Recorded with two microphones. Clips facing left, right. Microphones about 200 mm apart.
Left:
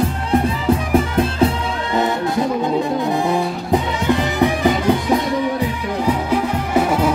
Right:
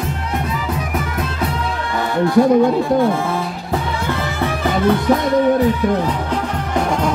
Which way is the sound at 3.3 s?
15° left (ahead or behind).